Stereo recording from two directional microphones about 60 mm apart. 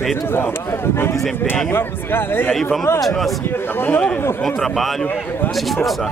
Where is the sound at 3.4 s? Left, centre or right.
Left.